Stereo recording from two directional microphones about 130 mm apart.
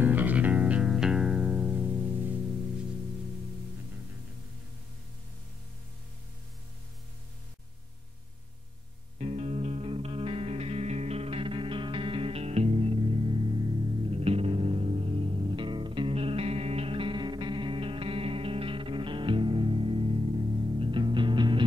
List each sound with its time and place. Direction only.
0.0 s music: 15° right (ahead or behind)
9.2 s music: 55° right (ahead or behind); by 21.6 s 40° right (ahead or behind)